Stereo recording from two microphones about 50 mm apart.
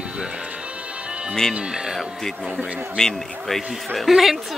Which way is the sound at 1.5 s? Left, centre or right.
Centre.